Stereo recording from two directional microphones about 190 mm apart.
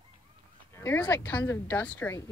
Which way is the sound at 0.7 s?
10° left (ahead or behind).